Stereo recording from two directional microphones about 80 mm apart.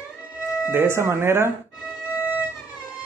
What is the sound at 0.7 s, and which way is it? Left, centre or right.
Speech, right.